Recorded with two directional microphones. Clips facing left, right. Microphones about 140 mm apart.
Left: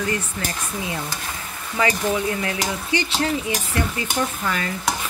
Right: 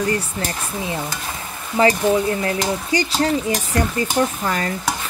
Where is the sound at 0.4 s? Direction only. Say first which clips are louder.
Right 3 dB; 35° right (ahead or behind).